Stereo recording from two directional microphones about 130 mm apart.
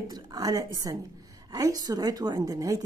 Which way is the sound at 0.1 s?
30° right (ahead or behind).